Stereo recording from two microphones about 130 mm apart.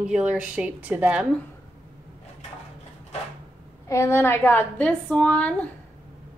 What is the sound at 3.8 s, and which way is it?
A woman's voice, 20° left (ahead or behind).